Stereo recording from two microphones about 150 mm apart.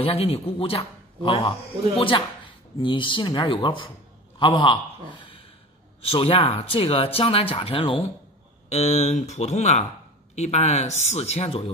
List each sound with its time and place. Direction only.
0.0 s a man's voice: 40° left (ahead or behind)